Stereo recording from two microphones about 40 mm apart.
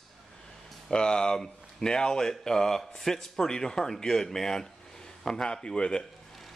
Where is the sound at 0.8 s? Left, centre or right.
Left.